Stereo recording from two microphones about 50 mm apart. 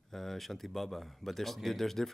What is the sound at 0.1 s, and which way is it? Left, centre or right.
Speech, centre.